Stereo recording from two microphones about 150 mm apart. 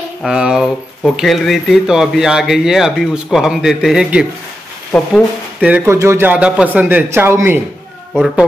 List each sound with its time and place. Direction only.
0.2 s speech: 5° right (ahead or behind)
5.6 s speech: 10° right (ahead or behind)
8.1 s speech: centre (ahead or behind)